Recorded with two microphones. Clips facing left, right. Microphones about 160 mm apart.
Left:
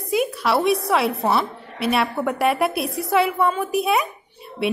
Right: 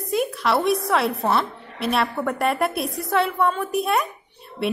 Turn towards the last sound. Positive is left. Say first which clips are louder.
# left 2 dB
turn(degrees=0)  # may be behind; listen again after turning